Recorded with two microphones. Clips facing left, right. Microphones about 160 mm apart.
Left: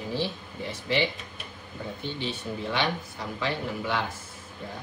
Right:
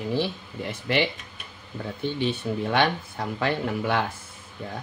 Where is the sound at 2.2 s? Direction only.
55° right (ahead or behind).